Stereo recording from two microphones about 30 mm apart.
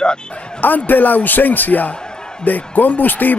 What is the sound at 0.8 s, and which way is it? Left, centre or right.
Speech, left.